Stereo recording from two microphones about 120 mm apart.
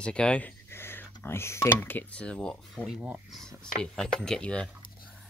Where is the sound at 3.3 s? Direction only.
5° left (ahead or behind).